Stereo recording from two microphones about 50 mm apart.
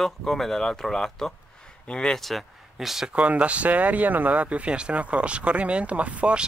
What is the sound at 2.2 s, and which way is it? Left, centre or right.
Speech, centre.